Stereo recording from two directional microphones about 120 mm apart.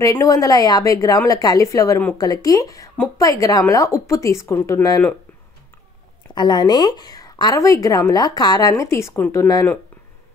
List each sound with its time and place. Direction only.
0.0 s a woman's voice: 25° left (ahead or behind)
6.3 s a woman's voice: 35° left (ahead or behind)